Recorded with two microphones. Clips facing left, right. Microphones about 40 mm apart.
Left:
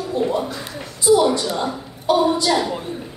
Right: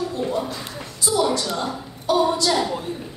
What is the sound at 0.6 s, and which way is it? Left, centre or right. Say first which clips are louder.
A woman's voice: left 2 dB; left.